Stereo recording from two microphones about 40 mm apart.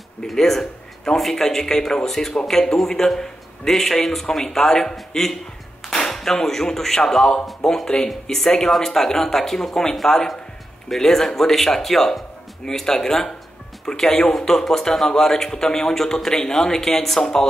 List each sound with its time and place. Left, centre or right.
0.3 s a man's voice: centre